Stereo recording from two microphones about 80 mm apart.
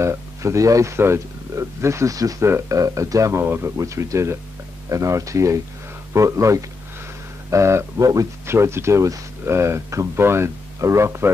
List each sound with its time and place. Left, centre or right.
0.0 s speech: right